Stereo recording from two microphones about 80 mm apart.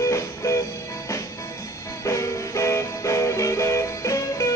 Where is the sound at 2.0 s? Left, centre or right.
Left.